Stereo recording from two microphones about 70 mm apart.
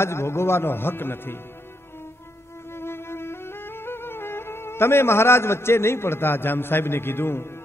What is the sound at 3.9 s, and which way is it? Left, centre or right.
A man's voice, left.